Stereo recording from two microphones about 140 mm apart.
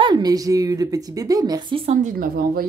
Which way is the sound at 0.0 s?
30° right (ahead or behind).